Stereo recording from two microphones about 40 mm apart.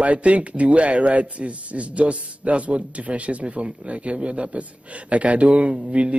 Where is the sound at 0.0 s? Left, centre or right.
Right.